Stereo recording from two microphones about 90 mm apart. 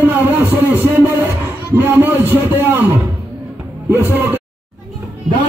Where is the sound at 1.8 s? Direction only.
25° right (ahead or behind).